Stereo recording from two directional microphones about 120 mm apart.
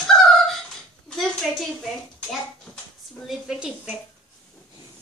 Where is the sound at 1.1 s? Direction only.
5° left (ahead or behind).